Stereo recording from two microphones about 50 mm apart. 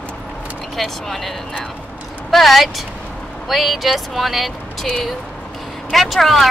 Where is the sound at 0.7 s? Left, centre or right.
Centre.